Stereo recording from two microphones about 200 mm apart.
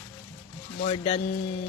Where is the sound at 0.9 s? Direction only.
25° left (ahead or behind).